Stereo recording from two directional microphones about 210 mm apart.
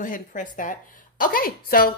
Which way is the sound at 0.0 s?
40° left (ahead or behind).